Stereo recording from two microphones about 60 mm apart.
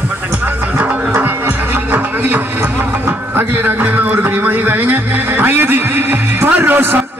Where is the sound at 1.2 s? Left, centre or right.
Right.